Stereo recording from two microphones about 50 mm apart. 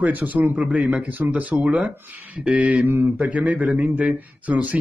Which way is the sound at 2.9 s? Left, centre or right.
Right.